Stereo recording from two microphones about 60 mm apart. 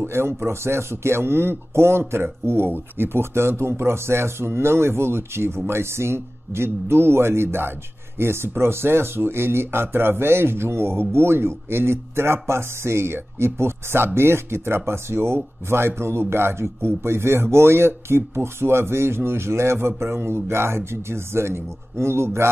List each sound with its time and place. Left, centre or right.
0.0 s speech: right